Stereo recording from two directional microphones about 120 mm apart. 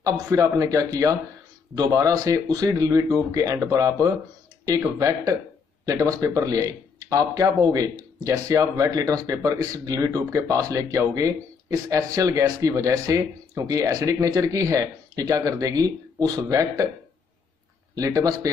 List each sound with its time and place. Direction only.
0.3 s speech: 25° right (ahead or behind)
17.9 s speech: 30° right (ahead or behind)